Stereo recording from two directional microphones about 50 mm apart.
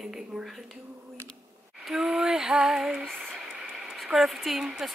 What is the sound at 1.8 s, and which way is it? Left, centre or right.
Female singing, centre.